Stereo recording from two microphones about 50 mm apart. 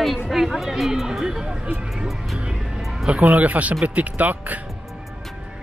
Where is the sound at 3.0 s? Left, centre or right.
Right.